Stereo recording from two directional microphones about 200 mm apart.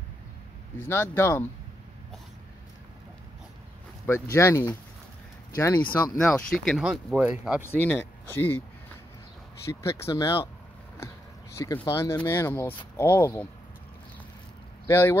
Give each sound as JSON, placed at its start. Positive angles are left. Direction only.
{"t": 0.7, "sound": "speech", "side_deg": 10}
{"t": 4.0, "sound": "speech", "side_deg": 10}
{"t": 7.6, "sound": "speech", "side_deg": 10}
{"t": 9.7, "sound": "speech", "side_deg": 15}
{"t": 11.5, "sound": "speech", "side_deg": 15}
{"t": 14.9, "sound": "speech", "side_deg": 10}